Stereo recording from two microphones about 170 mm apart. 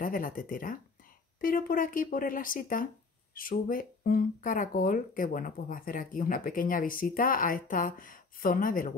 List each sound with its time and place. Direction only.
0.0 s speech: 55° left (ahead or behind)